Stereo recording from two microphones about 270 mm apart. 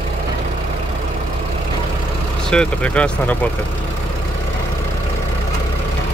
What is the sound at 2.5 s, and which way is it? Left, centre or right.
Speech, centre.